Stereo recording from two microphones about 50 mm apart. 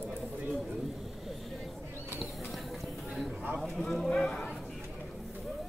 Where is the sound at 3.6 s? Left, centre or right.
Centre.